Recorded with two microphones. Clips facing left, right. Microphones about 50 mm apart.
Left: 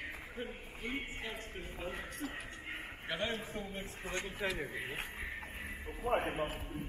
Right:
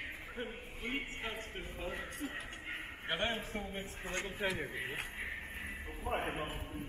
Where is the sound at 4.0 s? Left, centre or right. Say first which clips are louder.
Even; right.